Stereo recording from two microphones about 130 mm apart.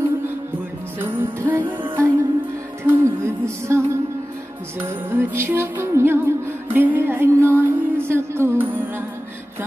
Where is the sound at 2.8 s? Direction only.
20° right (ahead or behind).